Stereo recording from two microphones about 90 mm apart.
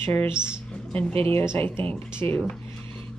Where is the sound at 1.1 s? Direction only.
90° right.